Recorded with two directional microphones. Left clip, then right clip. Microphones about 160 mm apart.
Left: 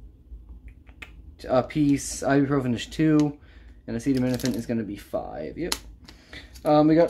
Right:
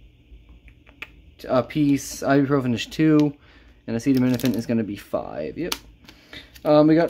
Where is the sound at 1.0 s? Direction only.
25° right (ahead or behind).